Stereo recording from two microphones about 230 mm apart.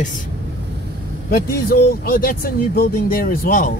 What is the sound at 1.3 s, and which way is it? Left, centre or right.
Speech, left.